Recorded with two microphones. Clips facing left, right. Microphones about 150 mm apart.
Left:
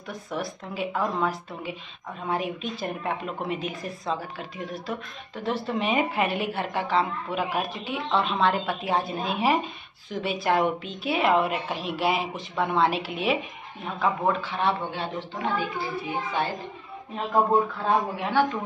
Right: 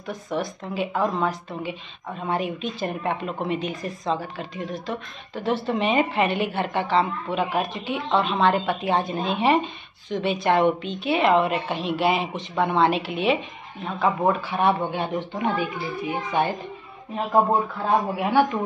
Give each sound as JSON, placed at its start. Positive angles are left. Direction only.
{"t": 0.0, "sound": "speech", "side_deg": 0}
{"t": 14.2, "sound": "speech", "side_deg": -10}
{"t": 18.1, "sound": "speech", "side_deg": -10}